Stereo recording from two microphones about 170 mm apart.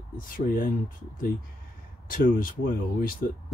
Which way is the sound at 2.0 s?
55° left (ahead or behind).